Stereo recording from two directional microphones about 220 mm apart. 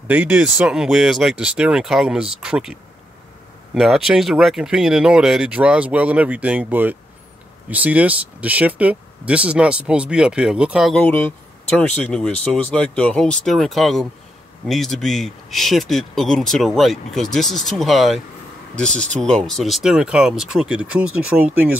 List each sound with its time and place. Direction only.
0.1 s speech: 5° right (ahead or behind)